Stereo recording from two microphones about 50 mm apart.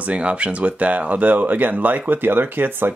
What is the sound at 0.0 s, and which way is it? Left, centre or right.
Speech, right.